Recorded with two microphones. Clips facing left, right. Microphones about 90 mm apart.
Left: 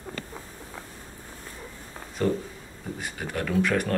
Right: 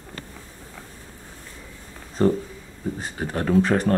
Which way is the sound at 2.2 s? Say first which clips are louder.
Right 6 dB; 35° right (ahead or behind).